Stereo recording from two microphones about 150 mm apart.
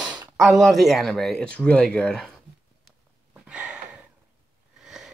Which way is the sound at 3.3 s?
5° right (ahead or behind).